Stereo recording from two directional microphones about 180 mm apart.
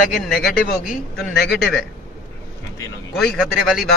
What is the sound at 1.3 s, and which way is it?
Speech, 65° left (ahead or behind).